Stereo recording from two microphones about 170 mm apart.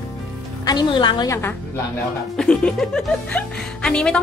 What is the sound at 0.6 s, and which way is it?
Speech, 25° left (ahead or behind).